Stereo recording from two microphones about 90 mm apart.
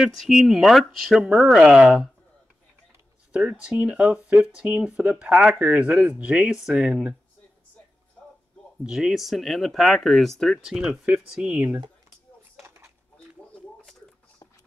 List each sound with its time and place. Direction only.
0.0 s speech: centre (ahead or behind)
3.3 s speech: 10° right (ahead or behind)
8.8 s speech: 5° right (ahead or behind)
12.6 s a sound: 30° right (ahead or behind)